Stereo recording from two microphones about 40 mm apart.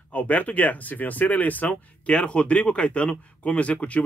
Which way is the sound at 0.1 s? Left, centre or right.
Left.